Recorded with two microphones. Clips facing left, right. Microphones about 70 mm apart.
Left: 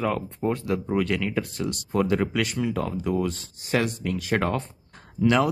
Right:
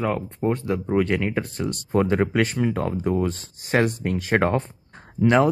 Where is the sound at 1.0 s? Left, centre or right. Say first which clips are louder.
Right 2 dB; right.